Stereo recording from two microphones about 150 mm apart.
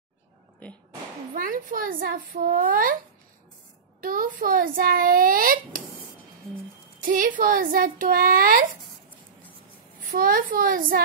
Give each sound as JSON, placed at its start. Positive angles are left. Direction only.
{"t": 1.3, "sound": "a child's voice", "side_deg": -65}
{"t": 4.0, "sound": "a child's voice", "side_deg": -70}
{"t": 7.0, "sound": "a child's voice", "side_deg": -65}
{"t": 10.1, "sound": "a child's voice", "side_deg": -70}